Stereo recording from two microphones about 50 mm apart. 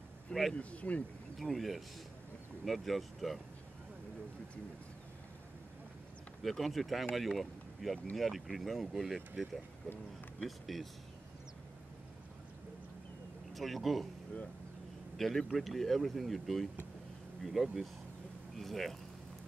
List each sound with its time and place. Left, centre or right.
0.3 s speech: centre
0.6 s speech: left
1.4 s speech: centre
6.4 s speech: centre
10.4 s speech: centre
13.5 s speech: centre
15.1 s speech: centre